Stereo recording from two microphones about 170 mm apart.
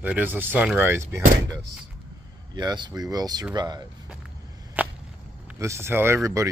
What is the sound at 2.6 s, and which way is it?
Speech, 25° right (ahead or behind).